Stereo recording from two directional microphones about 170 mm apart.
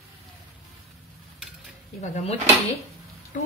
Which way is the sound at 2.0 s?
40° left (ahead or behind).